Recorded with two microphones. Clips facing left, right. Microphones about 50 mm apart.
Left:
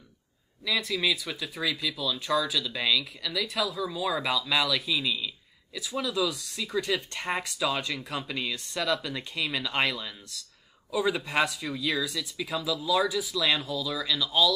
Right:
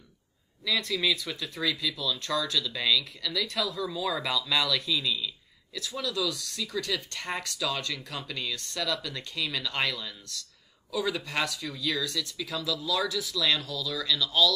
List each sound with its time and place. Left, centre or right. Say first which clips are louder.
0.7 s speech: even; centre